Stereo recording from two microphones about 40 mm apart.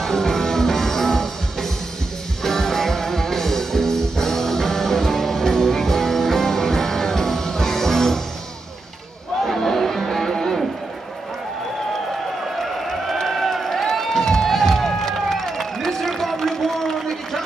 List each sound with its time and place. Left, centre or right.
0.0 s music: centre
9.4 s crowd: centre
12.5 s run: centre